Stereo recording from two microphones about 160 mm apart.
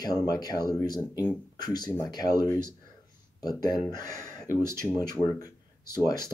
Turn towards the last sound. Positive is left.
turn(degrees=25)  # may be behind; listen again after turning